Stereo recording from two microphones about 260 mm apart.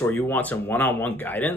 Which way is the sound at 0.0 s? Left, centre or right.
Centre.